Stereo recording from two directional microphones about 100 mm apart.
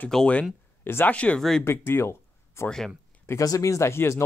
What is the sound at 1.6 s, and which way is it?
Speech, 25° left (ahead or behind).